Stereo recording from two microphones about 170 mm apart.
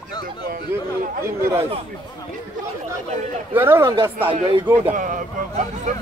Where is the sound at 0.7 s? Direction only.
15° right (ahead or behind).